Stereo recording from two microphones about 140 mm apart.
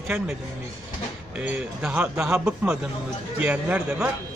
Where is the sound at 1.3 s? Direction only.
10° right (ahead or behind).